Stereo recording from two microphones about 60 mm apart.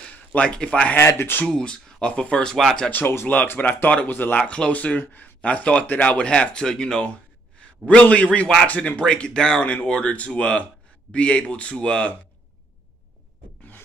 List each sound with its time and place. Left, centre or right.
0.3 s speech: centre
0.9 s speech: left
1.5 s speech: centre
2.5 s speech: centre
2.9 s speech: left
3.5 s speech: left
4.4 s speech: centre